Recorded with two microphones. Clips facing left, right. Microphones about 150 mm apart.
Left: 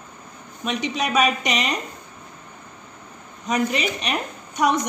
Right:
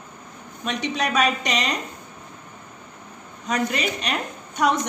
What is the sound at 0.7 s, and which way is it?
A woman's voice, 15° left (ahead or behind).